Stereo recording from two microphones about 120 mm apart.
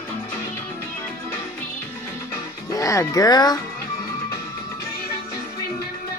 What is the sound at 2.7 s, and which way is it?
Speech, 30° left (ahead or behind).